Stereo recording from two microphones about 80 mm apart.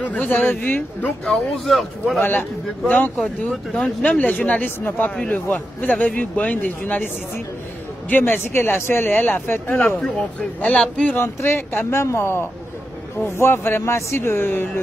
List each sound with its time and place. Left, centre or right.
0.0 s speech: centre
1.2 s speech: centre
3.7 s speech: centre
8.1 s speech: left
11.1 s speech: left